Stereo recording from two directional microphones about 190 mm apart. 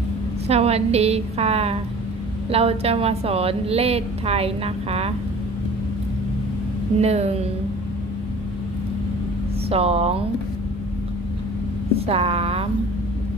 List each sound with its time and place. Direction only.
0.5 s a woman's voice: 35° right (ahead or behind)
7.0 s a woman's voice: 35° right (ahead or behind)
9.7 s a woman's voice: 30° right (ahead or behind)
12.1 s a woman's voice: 30° right (ahead or behind)